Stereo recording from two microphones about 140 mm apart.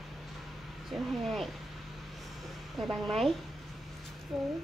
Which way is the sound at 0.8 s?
Centre (ahead or behind).